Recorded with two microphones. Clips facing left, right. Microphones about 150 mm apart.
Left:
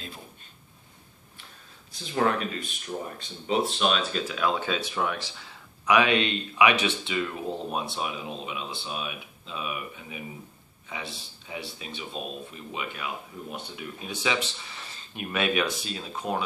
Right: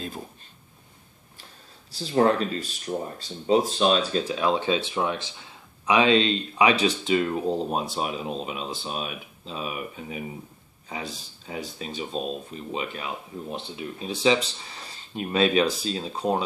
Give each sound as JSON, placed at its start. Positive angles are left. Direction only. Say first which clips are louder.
{"t": 1.9, "sound": "speech", "louder": "right 5 dB", "side_deg": -35}